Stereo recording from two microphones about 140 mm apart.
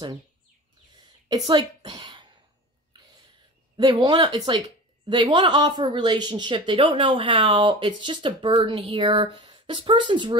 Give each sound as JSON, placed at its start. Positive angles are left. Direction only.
{"t": 1.3, "sound": "a woman's voice", "side_deg": -30}
{"t": 3.7, "sound": "a woman's voice", "side_deg": -30}